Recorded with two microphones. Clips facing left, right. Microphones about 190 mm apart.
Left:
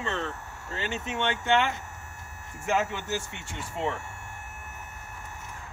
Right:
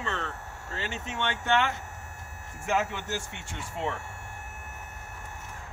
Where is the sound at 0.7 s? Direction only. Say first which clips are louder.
Left 3 dB; 25° left (ahead or behind).